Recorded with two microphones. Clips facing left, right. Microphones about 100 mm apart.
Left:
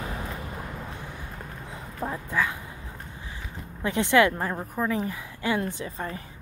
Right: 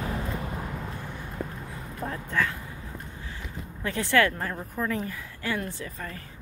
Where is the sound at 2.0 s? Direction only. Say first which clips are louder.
Left 1 dB; 15° left (ahead or behind).